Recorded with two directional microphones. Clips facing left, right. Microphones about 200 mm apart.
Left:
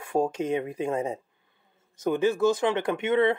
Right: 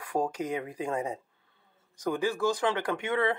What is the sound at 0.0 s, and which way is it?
Speech, 25° left (ahead or behind).